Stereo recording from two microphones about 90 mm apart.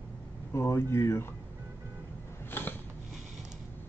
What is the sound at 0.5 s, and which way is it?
Speech, 30° left (ahead or behind).